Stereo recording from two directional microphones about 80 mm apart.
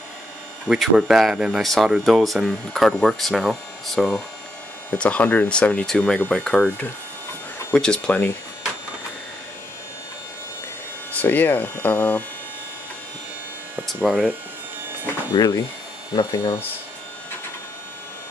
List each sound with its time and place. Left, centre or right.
0.7 s speech: centre
4.9 s speech: centre
7.7 s speech: centre
11.1 s speech: left
13.8 s speech: centre
15.3 s speech: left